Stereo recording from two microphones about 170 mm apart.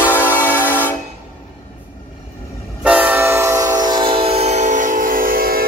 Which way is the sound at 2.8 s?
10° right (ahead or behind).